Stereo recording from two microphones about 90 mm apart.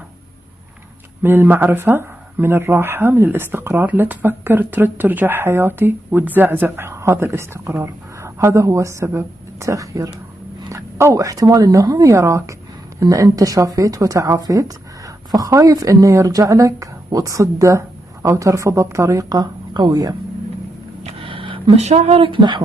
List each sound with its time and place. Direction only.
1.2 s speech: 25° right (ahead or behind)
6.9 s a woman's voice: 30° right (ahead or behind)
21.2 s speech: 70° right (ahead or behind)